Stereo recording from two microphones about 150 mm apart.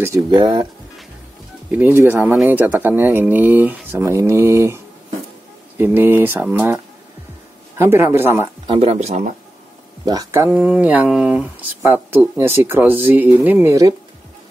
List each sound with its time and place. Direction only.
0.0 s speech: 25° right (ahead or behind)
1.7 s speech: 15° right (ahead or behind)
2.3 s speech: centre (ahead or behind)
2.6 s speech: 15° right (ahead or behind)
8.6 s speech: 40° right (ahead or behind)
10.0 s speech: 20° right (ahead or behind)